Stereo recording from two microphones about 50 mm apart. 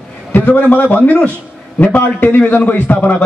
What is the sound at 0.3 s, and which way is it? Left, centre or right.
A man's voice, left.